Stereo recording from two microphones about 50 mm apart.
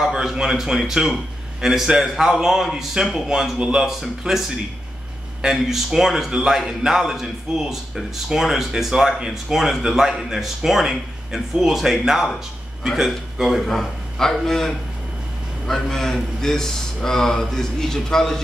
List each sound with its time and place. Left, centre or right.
0.0 s a man's voice: centre
3.5 s a man's voice: right; by 18.4 s centre